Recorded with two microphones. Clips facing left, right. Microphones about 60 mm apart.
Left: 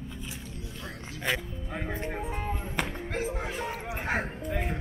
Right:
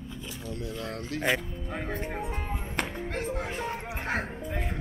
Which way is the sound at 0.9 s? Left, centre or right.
Right.